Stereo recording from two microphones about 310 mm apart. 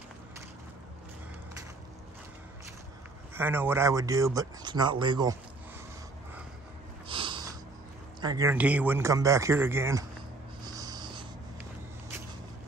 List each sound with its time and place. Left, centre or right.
3.3 s speech: centre
7.1 s snort: centre
8.2 s speech: centre
10.6 s a sound: centre